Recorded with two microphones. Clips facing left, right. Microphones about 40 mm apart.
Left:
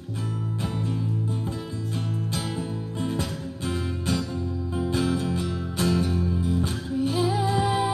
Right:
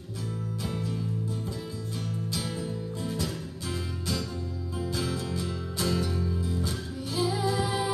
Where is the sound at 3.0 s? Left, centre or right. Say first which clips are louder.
Left 5 dB; left.